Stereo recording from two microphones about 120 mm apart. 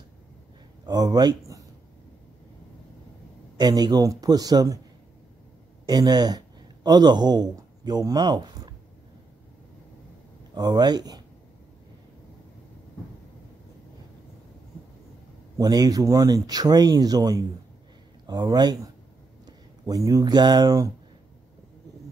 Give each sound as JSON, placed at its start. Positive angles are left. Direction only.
{"t": 0.8, "sound": "speech", "side_deg": -35}
{"t": 3.5, "sound": "speech", "side_deg": -35}
{"t": 5.9, "sound": "speech", "side_deg": -35}
{"t": 10.5, "sound": "speech", "side_deg": -35}
{"t": 15.5, "sound": "speech", "side_deg": -35}